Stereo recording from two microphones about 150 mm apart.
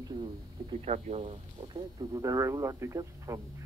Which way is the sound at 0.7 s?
45° right (ahead or behind).